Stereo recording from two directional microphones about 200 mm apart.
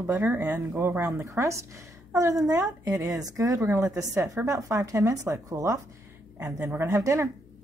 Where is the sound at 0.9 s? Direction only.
Centre (ahead or behind).